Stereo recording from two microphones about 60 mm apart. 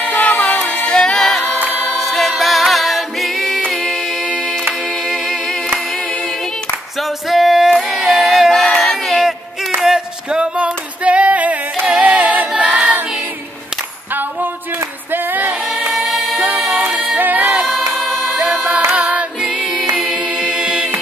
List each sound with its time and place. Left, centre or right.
0.2 s a capella: left; by 3.6 s centre
3.7 s music: centre
5.0 s music: centre
7.0 s singing: centre
9.8 s female singing: centre
11.8 s a capella: centre
15.0 s singing: right
15.9 s music: centre
17.2 s music: right
17.6 s music: centre
18.5 s music: right
18.9 s singing: right
19.5 s music: centre
20.0 s chant: centre